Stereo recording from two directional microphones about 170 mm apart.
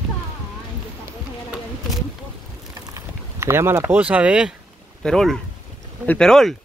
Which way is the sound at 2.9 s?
15° right (ahead or behind).